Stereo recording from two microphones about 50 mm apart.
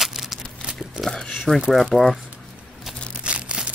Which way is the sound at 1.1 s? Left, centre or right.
Centre.